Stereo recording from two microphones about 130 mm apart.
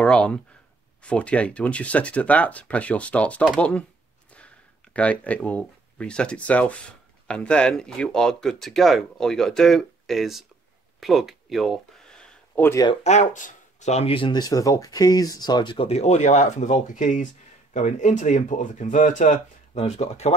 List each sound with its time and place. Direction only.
0.0 s speech: 5° left (ahead or behind)
11.0 s a sound: centre (ahead or behind)
13.0 s speech: 65° left (ahead or behind)